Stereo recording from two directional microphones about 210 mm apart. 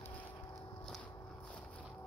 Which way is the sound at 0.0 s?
10° left (ahead or behind).